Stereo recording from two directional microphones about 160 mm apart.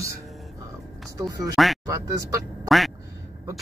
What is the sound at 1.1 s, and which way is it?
Speech, 20° right (ahead or behind).